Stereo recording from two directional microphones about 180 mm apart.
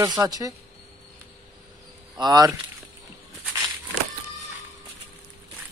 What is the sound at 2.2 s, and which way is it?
Speech, 20° right (ahead or behind).